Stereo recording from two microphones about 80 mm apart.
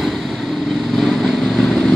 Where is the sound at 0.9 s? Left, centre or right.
Centre.